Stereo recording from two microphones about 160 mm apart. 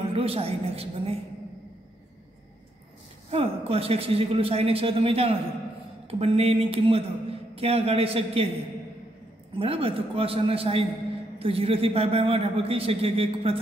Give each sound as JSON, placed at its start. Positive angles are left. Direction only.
{"t": 0.1, "sound": "a man's voice", "side_deg": -35}
{"t": 3.3, "sound": "a man's voice", "side_deg": -35}
{"t": 9.6, "sound": "a man's voice", "side_deg": -35}